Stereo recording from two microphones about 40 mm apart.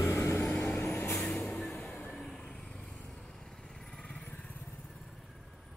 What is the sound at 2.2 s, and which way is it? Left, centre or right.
Vehicle, centre.